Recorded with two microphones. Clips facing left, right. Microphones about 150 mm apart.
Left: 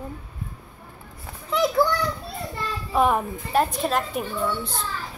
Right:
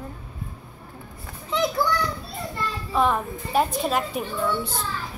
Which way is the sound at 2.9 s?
10° left (ahead or behind).